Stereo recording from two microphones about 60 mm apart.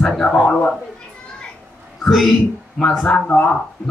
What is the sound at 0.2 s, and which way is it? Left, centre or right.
Speech, centre.